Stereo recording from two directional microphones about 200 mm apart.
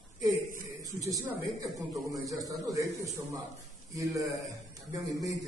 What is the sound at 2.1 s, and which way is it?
Speech, 15° right (ahead or behind).